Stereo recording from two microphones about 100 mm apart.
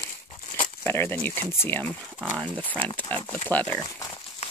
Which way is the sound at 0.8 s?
20° left (ahead or behind).